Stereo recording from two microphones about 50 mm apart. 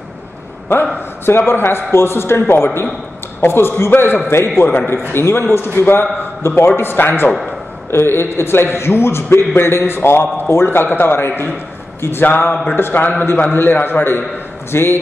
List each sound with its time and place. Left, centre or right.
1.2 s a man's voice: left
6.8 s a man's voice: left